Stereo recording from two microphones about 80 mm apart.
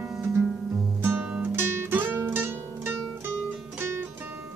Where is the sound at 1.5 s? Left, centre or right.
Right.